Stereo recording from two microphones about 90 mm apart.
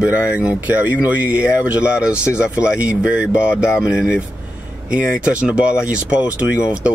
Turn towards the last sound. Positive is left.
turn(degrees=-10)  # may be behind; listen again after turning